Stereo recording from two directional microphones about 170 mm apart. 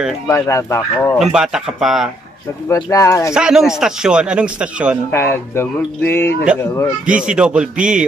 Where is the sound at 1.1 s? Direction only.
Centre (ahead or behind).